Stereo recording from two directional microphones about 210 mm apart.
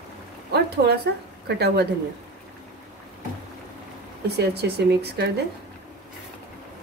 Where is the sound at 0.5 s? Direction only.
50° right (ahead or behind).